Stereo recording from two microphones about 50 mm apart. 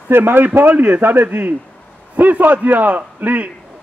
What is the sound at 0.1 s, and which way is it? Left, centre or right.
Speech, right.